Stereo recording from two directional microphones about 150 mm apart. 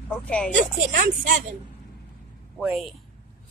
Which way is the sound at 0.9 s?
60° right (ahead or behind).